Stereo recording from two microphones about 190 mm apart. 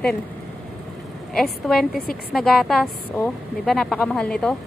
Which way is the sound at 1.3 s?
Centre (ahead or behind).